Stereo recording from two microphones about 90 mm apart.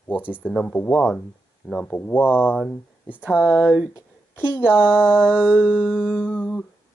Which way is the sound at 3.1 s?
10° right (ahead or behind).